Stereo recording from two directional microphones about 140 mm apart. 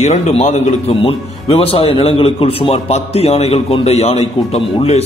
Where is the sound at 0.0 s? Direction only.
55° left (ahead or behind).